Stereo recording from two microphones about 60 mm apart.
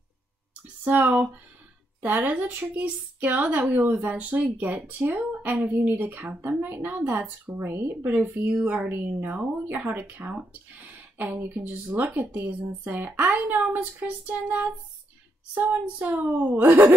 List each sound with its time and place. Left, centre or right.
0.8 s a woman's voice: right
13.7 s a woman's voice: right
14.0 s a woman's voice: right